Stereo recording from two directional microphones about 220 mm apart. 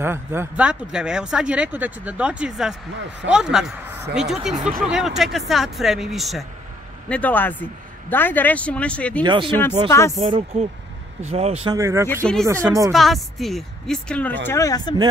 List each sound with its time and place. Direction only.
0.0 s a man's voice: 10° right (ahead or behind); by 9.2 s 5° left (ahead or behind)
9.2 s speech: 20° right (ahead or behind)
9.8 s a man's voice: 15° left (ahead or behind)
10.3 s speech: 30° right (ahead or behind)
11.7 s speech: 15° right (ahead or behind)
12.9 s speech: centre (ahead or behind)